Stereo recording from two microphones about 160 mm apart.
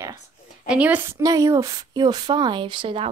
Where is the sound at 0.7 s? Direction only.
10° right (ahead or behind).